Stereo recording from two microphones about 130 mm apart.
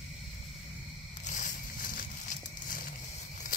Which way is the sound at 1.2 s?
80° left.